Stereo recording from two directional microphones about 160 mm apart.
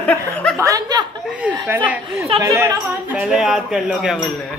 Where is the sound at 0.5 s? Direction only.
20° right (ahead or behind).